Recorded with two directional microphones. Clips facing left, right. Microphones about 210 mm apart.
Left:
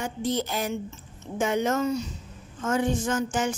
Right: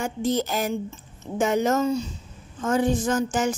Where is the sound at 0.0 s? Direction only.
45° right (ahead or behind).